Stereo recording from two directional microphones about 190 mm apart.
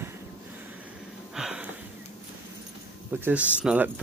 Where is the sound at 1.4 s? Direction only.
5° right (ahead or behind).